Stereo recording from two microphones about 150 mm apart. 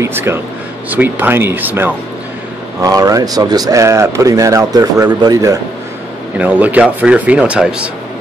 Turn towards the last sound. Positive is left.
turn(degrees=-5)  # may be behind; listen again after turning